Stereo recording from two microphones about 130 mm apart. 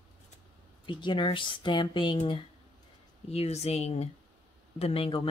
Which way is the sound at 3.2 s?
55° left (ahead or behind).